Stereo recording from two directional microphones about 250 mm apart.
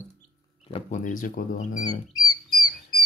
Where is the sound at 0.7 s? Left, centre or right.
Left.